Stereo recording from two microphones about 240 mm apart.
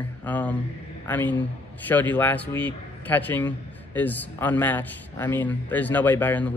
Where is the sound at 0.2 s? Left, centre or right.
Centre.